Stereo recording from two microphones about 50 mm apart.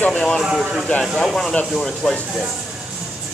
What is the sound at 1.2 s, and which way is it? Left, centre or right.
Speech, centre.